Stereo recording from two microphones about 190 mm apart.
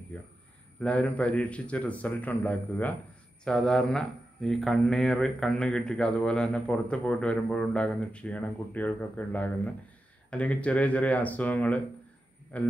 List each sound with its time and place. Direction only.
0.1 s a man's voice: 5° left (ahead or behind)